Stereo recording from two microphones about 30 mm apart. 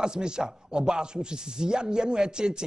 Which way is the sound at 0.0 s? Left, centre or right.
Right.